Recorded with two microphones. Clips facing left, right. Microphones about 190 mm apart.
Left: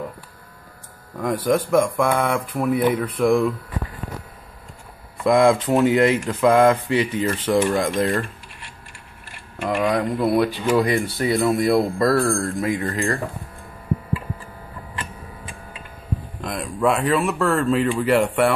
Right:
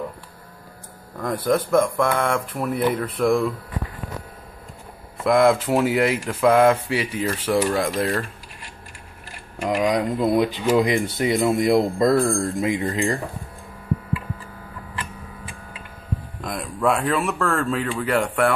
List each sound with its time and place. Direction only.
1.2 s speech: 10° left (ahead or behind)
5.2 s speech: centre (ahead or behind)
9.6 s speech: 10° right (ahead or behind)
16.3 s speech: centre (ahead or behind)